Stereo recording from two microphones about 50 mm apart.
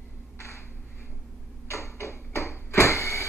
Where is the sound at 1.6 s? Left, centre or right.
Left.